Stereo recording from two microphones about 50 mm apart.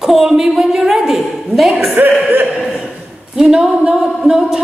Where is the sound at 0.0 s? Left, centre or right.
Centre.